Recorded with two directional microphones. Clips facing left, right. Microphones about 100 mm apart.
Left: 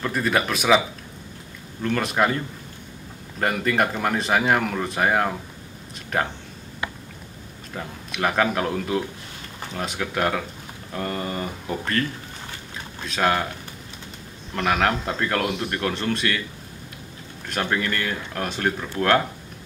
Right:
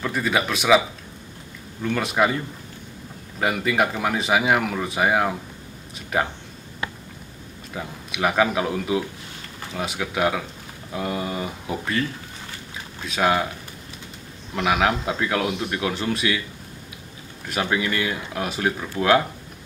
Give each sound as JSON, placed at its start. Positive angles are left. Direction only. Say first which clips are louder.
{"t": 0.0, "sound": "a man's voice", "louder": "even", "side_deg": 0}
{"t": 7.7, "sound": "a man's voice", "louder": "even", "side_deg": -5}
{"t": 13.0, "sound": "a man's voice", "louder": "right 1 dB", "side_deg": -5}
{"t": 14.5, "sound": "a man's voice", "louder": "right 1 dB", "side_deg": -5}
{"t": 17.5, "sound": "a man's voice", "louder": "right 1 dB", "side_deg": -10}